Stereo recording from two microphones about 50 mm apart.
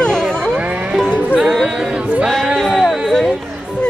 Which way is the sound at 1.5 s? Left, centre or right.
Centre.